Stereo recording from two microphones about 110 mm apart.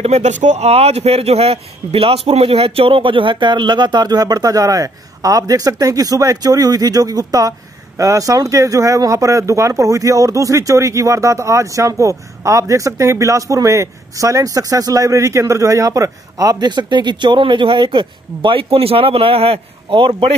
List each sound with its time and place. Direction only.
0.0 s speech: 85° right; by 20.3 s 55° right (ahead or behind)